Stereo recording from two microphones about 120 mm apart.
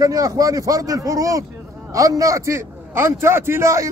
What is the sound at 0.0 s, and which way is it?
A man's voice, 30° right (ahead or behind).